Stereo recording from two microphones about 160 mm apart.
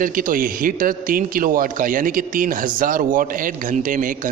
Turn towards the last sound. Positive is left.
turn(degrees=-55)  # may be behind; listen again after turning